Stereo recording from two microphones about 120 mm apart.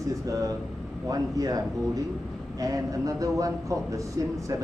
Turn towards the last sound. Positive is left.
turn(degrees=-25)  # may be behind; listen again after turning